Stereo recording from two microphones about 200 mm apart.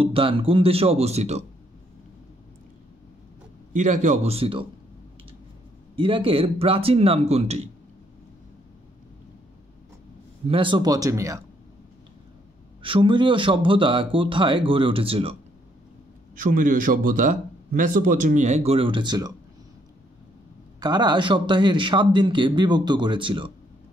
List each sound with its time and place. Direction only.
0.0 s speech: 25° right (ahead or behind)
3.7 s speech: 35° right (ahead or behind)
5.9 s speech: 25° right (ahead or behind)
10.4 s speech: 25° right (ahead or behind)
12.8 s speech: 25° right (ahead or behind)
16.3 s speech: 40° right (ahead or behind); by 19.3 s 20° right (ahead or behind)
20.8 s speech: 20° right (ahead or behind)